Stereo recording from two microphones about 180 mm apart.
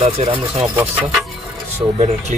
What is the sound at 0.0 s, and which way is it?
Speech, 35° right (ahead or behind).